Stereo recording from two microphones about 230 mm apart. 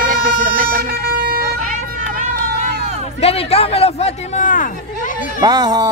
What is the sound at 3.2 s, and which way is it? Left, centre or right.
Speech, left.